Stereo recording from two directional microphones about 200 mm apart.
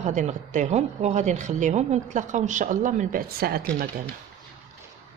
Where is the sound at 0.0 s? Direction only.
35° right (ahead or behind).